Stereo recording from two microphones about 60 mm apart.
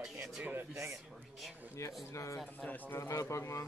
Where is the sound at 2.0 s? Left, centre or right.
Left.